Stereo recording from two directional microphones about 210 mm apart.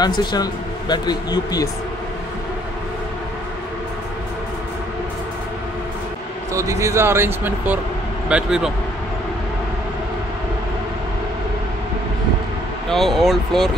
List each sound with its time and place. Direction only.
0.0 s speech: 20° left (ahead or behind)
6.5 s speech: 15° right (ahead or behind)
12.9 s speech: centre (ahead or behind)